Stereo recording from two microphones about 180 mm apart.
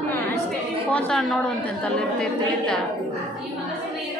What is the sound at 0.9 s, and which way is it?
A woman's voice, 5° left (ahead or behind).